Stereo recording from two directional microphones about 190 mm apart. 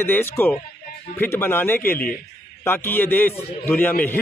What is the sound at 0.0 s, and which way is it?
Speech, 10° left (ahead or behind).